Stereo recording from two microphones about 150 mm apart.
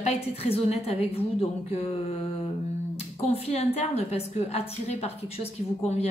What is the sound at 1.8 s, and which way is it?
Mantra, 40° left (ahead or behind).